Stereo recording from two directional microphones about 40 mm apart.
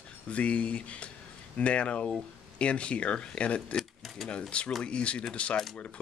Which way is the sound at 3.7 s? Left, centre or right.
Centre.